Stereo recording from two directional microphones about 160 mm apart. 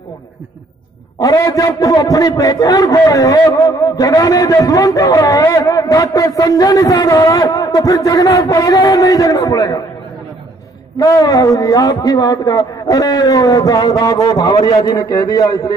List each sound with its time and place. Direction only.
1.2 s a man's voice: 20° left (ahead or behind)
11.0 s a man's voice: 20° left (ahead or behind)